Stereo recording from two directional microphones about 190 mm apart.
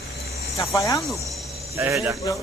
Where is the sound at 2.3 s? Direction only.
20° left (ahead or behind).